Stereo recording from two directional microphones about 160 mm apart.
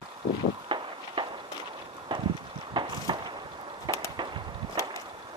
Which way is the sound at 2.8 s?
30° right (ahead or behind).